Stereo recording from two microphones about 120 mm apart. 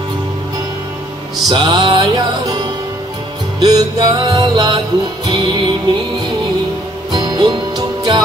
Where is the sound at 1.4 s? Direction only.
40° right (ahead or behind).